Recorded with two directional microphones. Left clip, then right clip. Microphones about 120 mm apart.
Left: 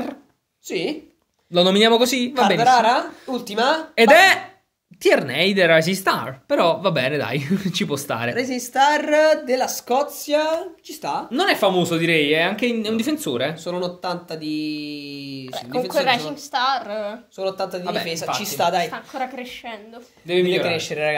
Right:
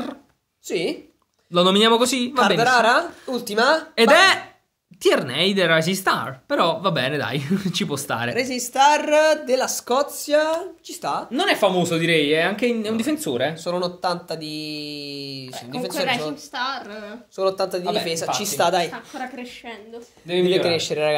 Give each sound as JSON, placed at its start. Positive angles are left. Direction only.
{"t": 0.7, "sound": "speech", "side_deg": -55}
{"t": 1.5, "sound": "a woman's voice", "side_deg": -5}
{"t": 2.8, "sound": "speech", "side_deg": -55}
{"t": 3.9, "sound": "a woman's voice", "side_deg": 0}
{"t": 8.4, "sound": "speech", "side_deg": -60}
{"t": 11.3, "sound": "speech", "side_deg": 5}
{"t": 13.7, "sound": "speech", "side_deg": -40}
{"t": 16.1, "sound": "a woman's voice", "side_deg": 65}
{"t": 17.4, "sound": "speech", "side_deg": -45}
{"t": 19.1, "sound": "a woman's voice", "side_deg": 75}
{"t": 20.2, "sound": "a woman's voice", "side_deg": 0}
{"t": 20.6, "sound": "speech", "side_deg": -30}